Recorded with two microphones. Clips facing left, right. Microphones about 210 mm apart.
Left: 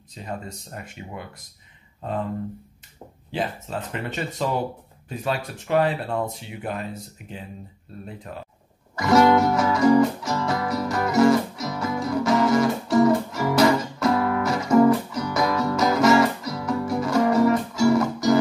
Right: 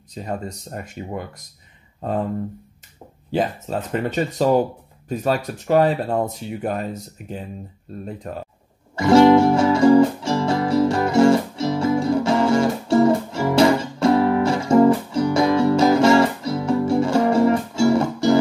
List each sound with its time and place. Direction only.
0.1 s speech: 40° right (ahead or behind)
3.3 s speech: 40° right (ahead or behind)
8.9 s music: 30° right (ahead or behind)